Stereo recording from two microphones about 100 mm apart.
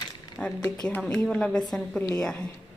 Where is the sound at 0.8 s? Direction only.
10° left (ahead or behind).